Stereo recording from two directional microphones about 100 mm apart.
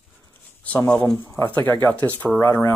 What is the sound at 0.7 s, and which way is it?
Speech, 10° left (ahead or behind).